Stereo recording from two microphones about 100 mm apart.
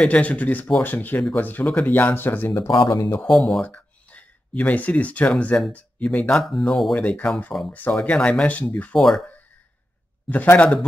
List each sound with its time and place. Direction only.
0.1 s speech: 15° left (ahead or behind)
2.9 s speech: 35° left (ahead or behind)
3.3 s speech: centre (ahead or behind)
3.6 s a sound: 15° left (ahead or behind)
5.7 s speech: 15° left (ahead or behind)
7.0 s speech: 15° left (ahead or behind)
10.3 s speech: 20° left (ahead or behind)